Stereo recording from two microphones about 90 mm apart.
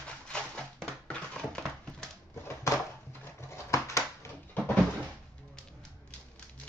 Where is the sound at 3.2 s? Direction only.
30° left (ahead or behind).